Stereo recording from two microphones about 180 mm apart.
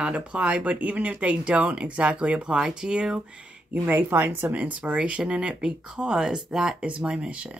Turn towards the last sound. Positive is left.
turn(degrees=-5)  # may be behind; listen again after turning